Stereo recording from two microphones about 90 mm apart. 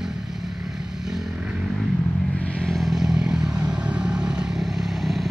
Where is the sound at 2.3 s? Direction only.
15° left (ahead or behind).